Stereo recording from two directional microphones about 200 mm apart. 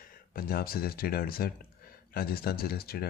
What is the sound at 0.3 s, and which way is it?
Speech, 45° left (ahead or behind).